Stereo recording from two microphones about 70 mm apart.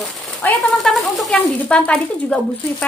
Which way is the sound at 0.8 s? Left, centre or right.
Centre.